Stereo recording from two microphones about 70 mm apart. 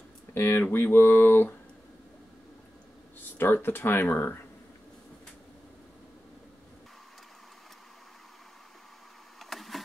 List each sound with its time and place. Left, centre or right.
0.3 s speech: left
3.2 s speech: left
9.4 s a sound: centre